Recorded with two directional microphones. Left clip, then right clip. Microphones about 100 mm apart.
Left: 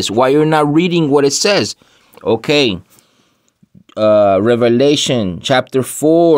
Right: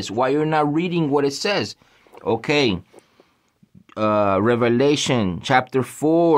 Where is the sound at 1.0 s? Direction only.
80° left.